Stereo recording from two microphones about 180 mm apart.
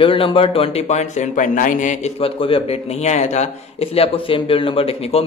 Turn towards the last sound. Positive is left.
turn(degrees=35)  # may be behind; listen again after turning